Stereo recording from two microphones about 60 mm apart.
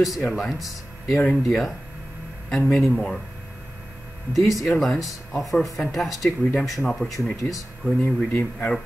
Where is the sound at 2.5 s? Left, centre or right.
Centre.